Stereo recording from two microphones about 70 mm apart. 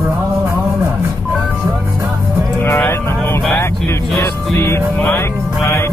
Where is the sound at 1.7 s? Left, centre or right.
Right.